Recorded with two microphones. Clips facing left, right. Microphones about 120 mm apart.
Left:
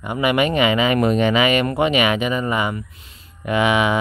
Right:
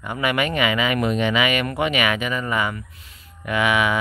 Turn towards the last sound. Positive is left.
turn(degrees=25)  # may be behind; listen again after turning